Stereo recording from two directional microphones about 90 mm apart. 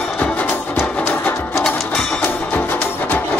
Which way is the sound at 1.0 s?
25° left (ahead or behind).